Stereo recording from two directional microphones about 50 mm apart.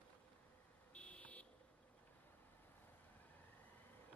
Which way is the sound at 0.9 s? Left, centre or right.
Left.